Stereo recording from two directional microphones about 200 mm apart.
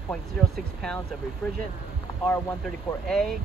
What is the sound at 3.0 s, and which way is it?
Speech, centre (ahead or behind).